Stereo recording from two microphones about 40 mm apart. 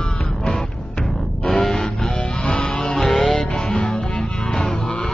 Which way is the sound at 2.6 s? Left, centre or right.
Centre.